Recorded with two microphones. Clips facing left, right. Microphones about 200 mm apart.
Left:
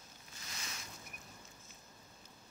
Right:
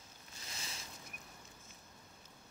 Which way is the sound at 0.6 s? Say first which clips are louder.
Left 1 dB; 30° right (ahead or behind).